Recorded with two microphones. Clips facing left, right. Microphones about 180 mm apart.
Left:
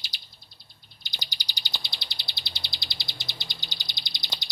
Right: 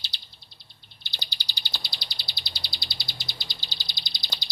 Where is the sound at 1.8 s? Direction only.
20° left (ahead or behind).